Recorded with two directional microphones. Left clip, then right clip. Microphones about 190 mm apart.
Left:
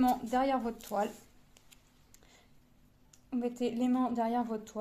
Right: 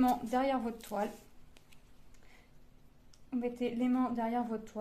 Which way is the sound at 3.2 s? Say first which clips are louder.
Left 1 dB; 30° left (ahead or behind).